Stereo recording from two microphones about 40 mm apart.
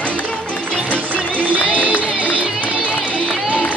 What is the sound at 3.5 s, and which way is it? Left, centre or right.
Crowd, right.